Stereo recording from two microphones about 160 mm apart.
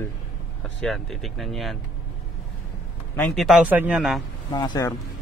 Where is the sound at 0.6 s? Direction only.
Centre (ahead or behind).